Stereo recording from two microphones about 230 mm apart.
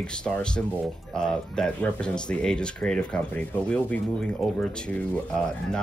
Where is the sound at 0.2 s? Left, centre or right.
Centre.